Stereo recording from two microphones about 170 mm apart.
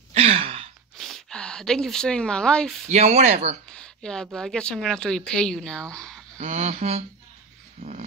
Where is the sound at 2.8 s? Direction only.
40° right (ahead or behind).